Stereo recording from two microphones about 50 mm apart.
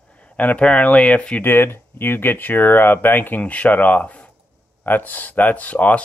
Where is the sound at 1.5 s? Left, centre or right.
Left.